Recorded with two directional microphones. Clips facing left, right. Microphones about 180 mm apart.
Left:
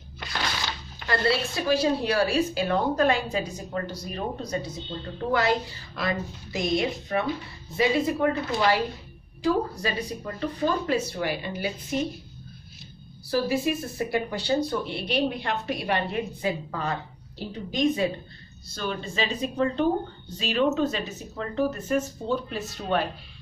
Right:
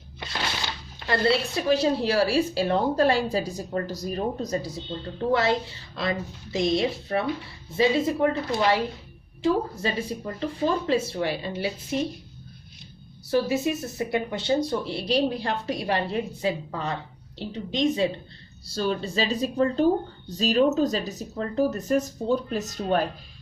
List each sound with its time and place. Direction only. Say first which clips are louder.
0.2 s speech: even; 25° right (ahead or behind)
5.3 s speech: right 1 dB; 25° right (ahead or behind)
13.3 s speech: right 1 dB; 20° right (ahead or behind); by 23.0 s 40° right (ahead or behind)